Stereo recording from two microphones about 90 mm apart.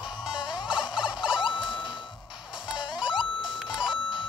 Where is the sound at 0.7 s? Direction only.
10° right (ahead or behind).